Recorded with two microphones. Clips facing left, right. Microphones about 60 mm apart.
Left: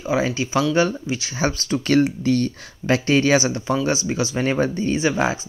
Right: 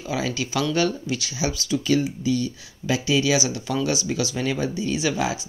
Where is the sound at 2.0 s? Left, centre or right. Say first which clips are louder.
Left 5 dB; left.